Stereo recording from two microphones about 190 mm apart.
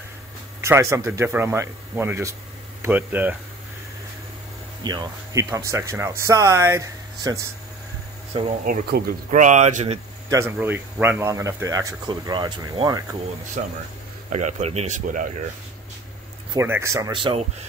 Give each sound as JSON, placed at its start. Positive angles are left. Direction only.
{"t": 0.6, "sound": "speech", "side_deg": -15}
{"t": 4.8, "sound": "speech", "side_deg": -20}
{"t": 8.6, "sound": "speech", "side_deg": -55}
{"t": 9.3, "sound": "speech", "side_deg": -40}
{"t": 10.3, "sound": "speech", "side_deg": -10}
{"t": 13.6, "sound": "speech", "side_deg": -35}
{"t": 16.5, "sound": "speech", "side_deg": -15}